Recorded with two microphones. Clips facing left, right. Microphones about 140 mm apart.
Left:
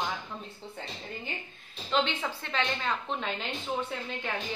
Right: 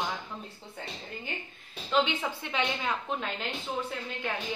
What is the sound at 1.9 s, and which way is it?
A woman's voice, 10° right (ahead or behind).